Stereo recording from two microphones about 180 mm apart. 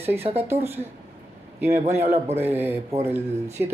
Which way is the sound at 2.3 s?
15° right (ahead or behind).